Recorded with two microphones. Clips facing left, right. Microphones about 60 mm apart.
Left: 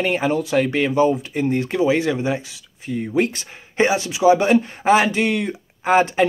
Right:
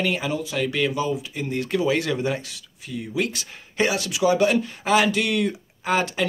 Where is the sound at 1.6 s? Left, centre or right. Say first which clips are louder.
Left 1 dB; left.